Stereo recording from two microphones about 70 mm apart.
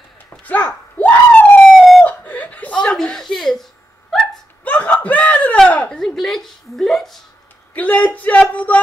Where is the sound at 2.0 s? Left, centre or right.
Left; by 3.6 s centre.